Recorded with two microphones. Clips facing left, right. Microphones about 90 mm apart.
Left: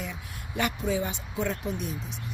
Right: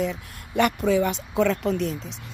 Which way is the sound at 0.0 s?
65° right (ahead or behind).